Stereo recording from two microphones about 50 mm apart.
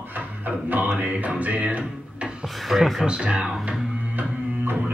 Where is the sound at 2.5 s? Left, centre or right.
Centre.